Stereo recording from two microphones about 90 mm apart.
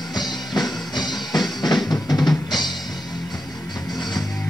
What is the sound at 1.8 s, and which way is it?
Drum, centre (ahead or behind).